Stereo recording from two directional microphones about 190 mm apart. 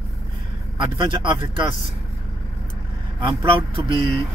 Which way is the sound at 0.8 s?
25° right (ahead or behind).